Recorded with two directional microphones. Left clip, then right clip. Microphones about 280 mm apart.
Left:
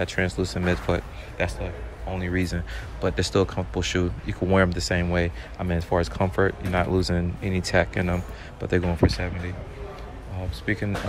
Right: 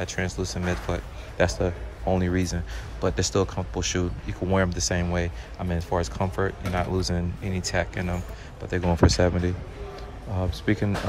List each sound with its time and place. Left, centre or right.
0.0 s speech: centre
1.5 s speech: right
10.6 s speech: centre